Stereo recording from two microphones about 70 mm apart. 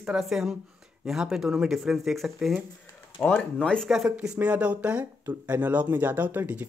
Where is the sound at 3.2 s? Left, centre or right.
Left.